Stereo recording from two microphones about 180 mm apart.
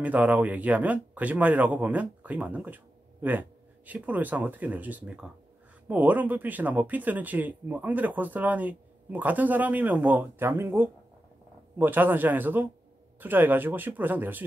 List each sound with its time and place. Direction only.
0.0 s speech: 10° right (ahead or behind)